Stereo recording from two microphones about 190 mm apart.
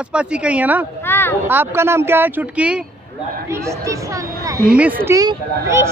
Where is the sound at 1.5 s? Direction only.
10° right (ahead or behind).